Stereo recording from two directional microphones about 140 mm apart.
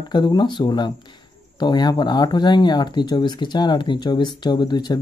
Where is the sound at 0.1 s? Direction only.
30° left (ahead or behind).